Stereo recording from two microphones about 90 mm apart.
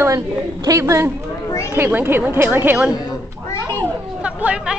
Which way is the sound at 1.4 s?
35° left (ahead or behind).